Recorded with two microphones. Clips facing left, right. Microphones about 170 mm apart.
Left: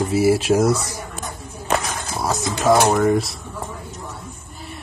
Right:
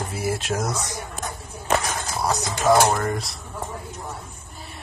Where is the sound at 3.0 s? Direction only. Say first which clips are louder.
Left 9 dB; centre (ahead or behind).